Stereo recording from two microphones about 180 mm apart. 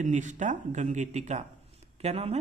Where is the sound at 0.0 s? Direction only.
45° right (ahead or behind).